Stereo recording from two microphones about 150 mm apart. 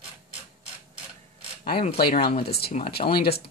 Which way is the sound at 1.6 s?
85° left.